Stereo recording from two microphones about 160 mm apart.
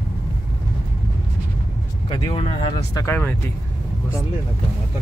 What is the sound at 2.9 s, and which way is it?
Speech, 15° left (ahead or behind).